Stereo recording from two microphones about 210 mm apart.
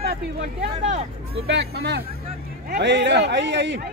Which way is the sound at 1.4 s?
55° right (ahead or behind).